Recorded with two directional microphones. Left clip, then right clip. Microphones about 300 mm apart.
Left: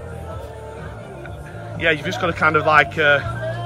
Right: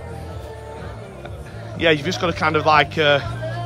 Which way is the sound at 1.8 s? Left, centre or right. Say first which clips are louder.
Right 1 dB; centre.